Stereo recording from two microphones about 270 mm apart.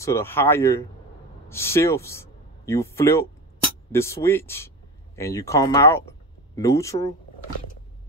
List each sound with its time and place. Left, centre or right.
0.0 s a man's voice: centre